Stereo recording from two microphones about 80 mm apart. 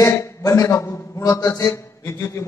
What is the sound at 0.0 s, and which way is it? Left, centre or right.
A man's voice, left.